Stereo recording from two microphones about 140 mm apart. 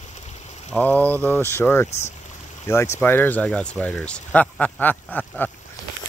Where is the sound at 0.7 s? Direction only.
10° left (ahead or behind).